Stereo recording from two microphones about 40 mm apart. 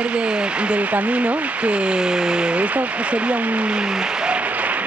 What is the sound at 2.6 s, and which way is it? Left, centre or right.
Speech, right.